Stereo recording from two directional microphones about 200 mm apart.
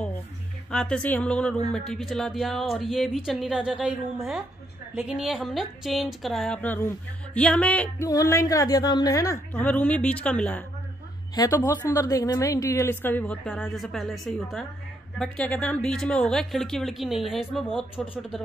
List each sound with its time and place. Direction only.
0.7 s a woman's voice: 5° left (ahead or behind)